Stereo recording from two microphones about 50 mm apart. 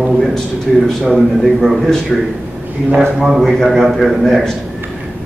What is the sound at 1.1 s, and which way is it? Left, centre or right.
Speech, centre.